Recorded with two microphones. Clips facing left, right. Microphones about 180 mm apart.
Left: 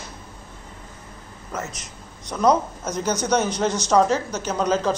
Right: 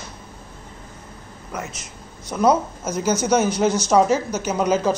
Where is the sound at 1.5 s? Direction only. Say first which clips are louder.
Even; 15° right (ahead or behind).